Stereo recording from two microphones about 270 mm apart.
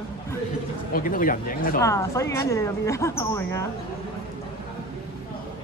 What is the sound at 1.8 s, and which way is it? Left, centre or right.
Speech, centre.